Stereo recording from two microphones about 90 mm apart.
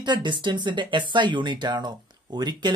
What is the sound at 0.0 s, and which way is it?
Speech, 60° right (ahead or behind).